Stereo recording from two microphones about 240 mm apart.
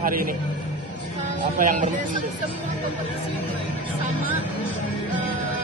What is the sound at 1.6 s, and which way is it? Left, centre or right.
Speech, right.